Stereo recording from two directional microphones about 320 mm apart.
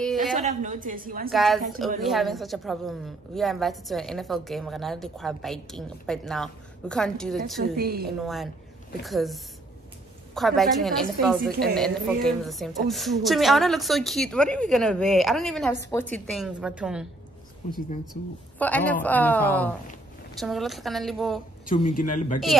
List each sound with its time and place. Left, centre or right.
0.0 s a sound: centre
0.4 s a woman's voice: right
1.3 s a woman's voice: centre
7.6 s a woman's voice: right
8.2 s a woman's voice: centre
18.6 s a woman's voice: centre
21.6 s speech: left